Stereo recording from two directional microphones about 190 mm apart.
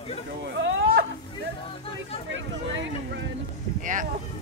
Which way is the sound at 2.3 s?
80° right.